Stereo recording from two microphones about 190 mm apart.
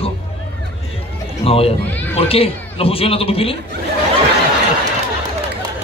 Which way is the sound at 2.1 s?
30° left (ahead or behind).